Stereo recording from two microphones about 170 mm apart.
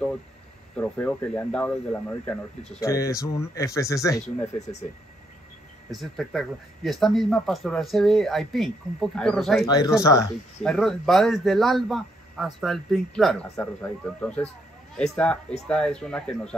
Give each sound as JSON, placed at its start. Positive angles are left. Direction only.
{"t": 0.7, "sound": "speech", "side_deg": 5}
{"t": 2.8, "sound": "speech", "side_deg": 20}
{"t": 5.9, "sound": "speech", "side_deg": 0}
{"t": 9.7, "sound": "speech", "side_deg": 20}
{"t": 10.6, "sound": "speech", "side_deg": 5}